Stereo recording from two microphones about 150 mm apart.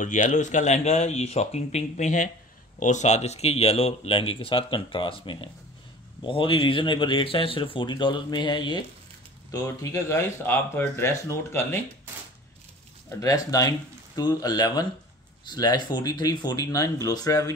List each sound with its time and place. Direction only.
0.0 s speech: 55° left (ahead or behind); by 11.8 s 15° left (ahead or behind)
13.2 s speech: 25° left (ahead or behind)